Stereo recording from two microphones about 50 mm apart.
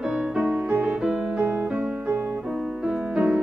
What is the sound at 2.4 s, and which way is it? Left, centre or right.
Music, centre.